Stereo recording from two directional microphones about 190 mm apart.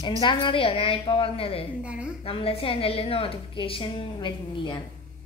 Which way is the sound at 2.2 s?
30° left (ahead or behind).